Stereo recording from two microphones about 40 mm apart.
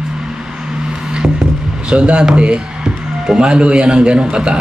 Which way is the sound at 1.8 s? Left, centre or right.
Right.